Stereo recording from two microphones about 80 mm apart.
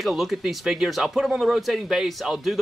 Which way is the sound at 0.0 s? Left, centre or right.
Centre.